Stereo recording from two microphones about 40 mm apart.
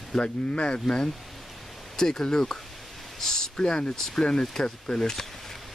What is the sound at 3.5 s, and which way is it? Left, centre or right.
Speech, left.